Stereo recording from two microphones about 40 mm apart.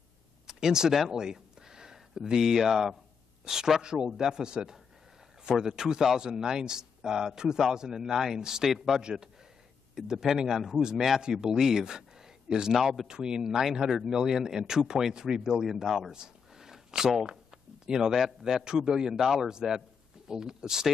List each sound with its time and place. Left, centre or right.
0.5 s a man's voice: centre
13.0 s a man's voice: centre